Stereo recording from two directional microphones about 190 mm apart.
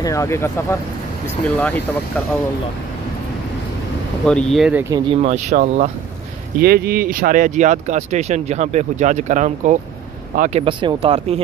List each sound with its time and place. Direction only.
0.0 s speech: 15° left (ahead or behind)
4.3 s speech: 5° left (ahead or behind)
4.9 s speech: 25° right (ahead or behind)
6.6 s speech: 55° right (ahead or behind)
10.6 s speech: 25° right (ahead or behind)